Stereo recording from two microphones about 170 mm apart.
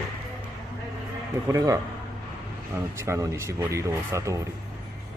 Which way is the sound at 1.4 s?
20° right (ahead or behind).